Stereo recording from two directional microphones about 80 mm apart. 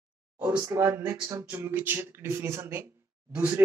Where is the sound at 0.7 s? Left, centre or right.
Right.